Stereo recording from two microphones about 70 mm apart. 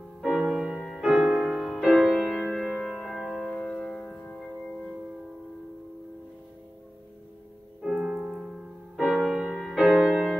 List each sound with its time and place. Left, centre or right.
0.2 s music: centre
2.2 s music: centre
3.5 s music: centre
7.8 s music: centre